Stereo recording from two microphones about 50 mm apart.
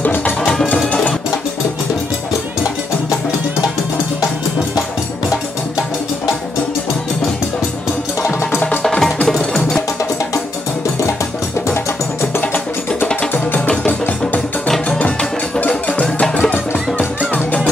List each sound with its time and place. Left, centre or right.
0.0 s music: left
0.4 s music: centre
8.8 s music: centre
9.5 s wood block: centre
11.6 s music: left
12.4 s music: left
15.7 s music: left
17.3 s music: left